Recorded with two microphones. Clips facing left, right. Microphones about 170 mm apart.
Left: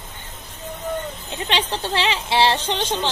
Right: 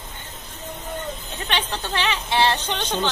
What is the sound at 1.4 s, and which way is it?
Speech, 30° left (ahead or behind).